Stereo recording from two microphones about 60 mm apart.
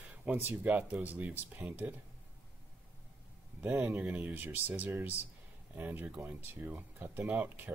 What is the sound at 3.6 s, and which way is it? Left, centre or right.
Speech, right.